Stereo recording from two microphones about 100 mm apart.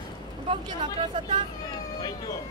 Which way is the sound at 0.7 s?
55° right (ahead or behind).